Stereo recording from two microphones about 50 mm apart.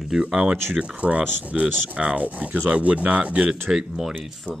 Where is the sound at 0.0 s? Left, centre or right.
Centre.